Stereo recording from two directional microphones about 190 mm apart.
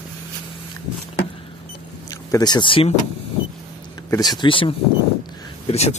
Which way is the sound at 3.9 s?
20° left (ahead or behind).